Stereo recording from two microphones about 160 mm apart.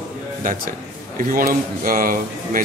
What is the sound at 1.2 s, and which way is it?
A man's voice, 60° right (ahead or behind).